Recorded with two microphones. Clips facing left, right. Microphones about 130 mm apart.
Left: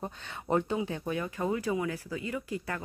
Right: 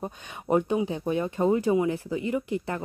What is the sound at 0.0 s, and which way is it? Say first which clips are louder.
A woman's voice: right 3 dB; 15° right (ahead or behind).